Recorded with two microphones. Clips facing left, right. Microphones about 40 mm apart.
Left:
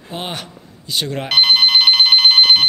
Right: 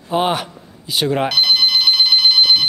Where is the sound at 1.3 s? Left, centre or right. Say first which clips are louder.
Left 7 dB; left.